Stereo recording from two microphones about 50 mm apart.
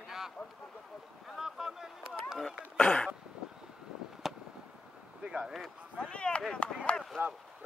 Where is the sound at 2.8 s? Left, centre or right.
Centre.